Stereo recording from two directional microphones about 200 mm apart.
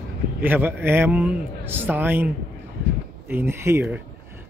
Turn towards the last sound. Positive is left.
turn(degrees=-10)  # may be behind; listen again after turning